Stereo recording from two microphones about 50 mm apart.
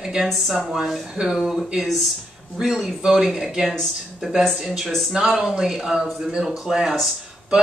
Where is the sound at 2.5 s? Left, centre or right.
Centre.